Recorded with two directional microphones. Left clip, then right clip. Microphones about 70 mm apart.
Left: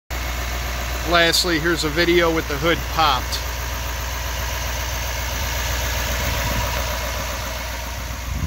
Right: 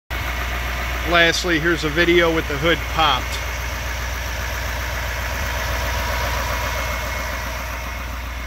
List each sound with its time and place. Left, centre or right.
1.1 s speech: centre